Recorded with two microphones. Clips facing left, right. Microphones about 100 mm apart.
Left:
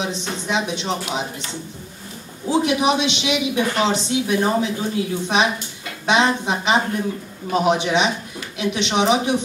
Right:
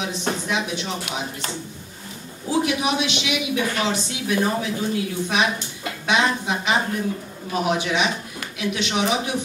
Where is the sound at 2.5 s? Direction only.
20° left (ahead or behind).